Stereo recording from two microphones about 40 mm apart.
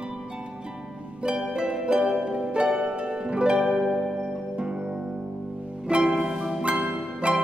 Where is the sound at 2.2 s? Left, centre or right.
Right.